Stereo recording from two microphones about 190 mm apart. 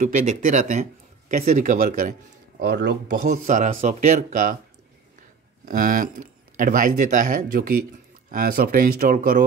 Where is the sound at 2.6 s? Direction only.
60° right (ahead or behind).